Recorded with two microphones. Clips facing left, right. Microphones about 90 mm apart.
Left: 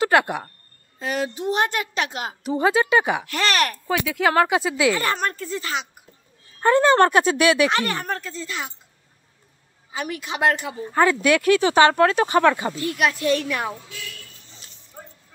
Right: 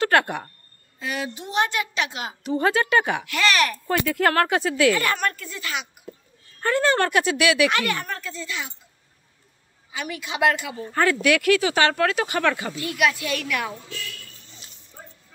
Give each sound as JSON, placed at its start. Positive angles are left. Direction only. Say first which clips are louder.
{"t": 0.0, "sound": "speech", "louder": "left 1 dB", "side_deg": 15}
{"t": 0.9, "sound": "speech", "louder": "left 4 dB", "side_deg": 35}
{"t": 2.4, "sound": "speech", "louder": "left 2 dB", "side_deg": 15}
{"t": 3.3, "sound": "speech", "louder": "even", "side_deg": 40}
{"t": 3.9, "sound": "speech", "louder": "left 1 dB", "side_deg": 5}
{"t": 5.0, "sound": "speech", "louder": "left 1 dB", "side_deg": 30}
{"t": 7.0, "sound": "speech", "louder": "left 4 dB", "side_deg": 35}
{"t": 9.9, "sound": "speech", "louder": "even", "side_deg": 40}
{"t": 10.8, "sound": "speech", "louder": "left 4 dB", "side_deg": 20}
{"t": 11.1, "sound": "speech", "louder": "left 2 dB", "side_deg": 30}